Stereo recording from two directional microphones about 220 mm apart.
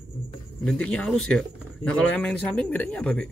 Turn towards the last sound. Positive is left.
turn(degrees=5)  # may be behind; listen again after turning